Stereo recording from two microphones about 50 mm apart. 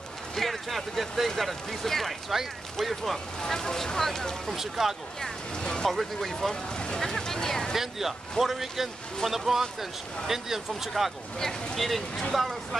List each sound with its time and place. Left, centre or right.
0.4 s speech: centre
3.3 s speech: centre
4.6 s speech: centre
5.2 s speech: centre
5.9 s speech: centre
6.5 s speech: centre
7.7 s speech: centre
11.3 s speech: centre